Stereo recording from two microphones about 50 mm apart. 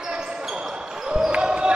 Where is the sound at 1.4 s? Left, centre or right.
Centre.